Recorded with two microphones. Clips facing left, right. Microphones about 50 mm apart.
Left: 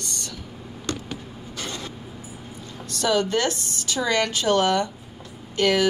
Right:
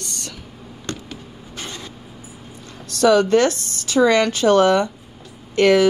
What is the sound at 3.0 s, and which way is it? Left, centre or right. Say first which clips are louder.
Speech: right 8 dB; right.